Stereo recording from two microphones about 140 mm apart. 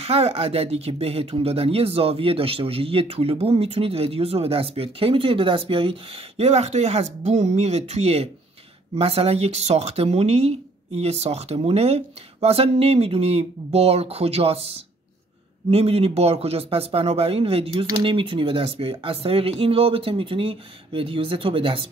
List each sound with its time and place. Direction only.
0.0 s speech: 45° right (ahead or behind)